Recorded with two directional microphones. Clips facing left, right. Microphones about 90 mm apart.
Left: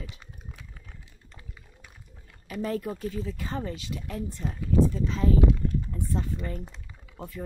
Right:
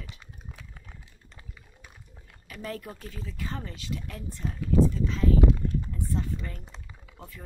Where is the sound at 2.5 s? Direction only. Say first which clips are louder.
Left 7 dB; 20° left (ahead or behind).